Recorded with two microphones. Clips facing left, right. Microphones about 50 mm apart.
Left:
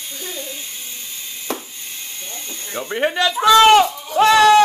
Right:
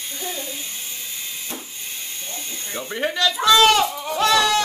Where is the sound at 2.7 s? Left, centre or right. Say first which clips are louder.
Left 4 dB; centre.